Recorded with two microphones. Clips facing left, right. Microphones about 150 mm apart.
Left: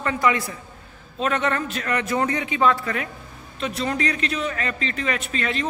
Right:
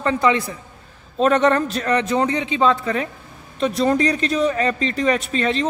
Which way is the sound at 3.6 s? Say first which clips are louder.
Right 7 dB; 40° right (ahead or behind).